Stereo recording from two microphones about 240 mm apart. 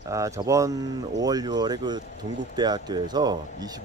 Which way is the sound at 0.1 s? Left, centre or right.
Centre.